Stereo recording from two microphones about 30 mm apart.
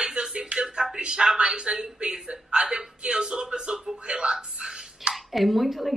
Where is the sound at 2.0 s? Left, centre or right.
Right.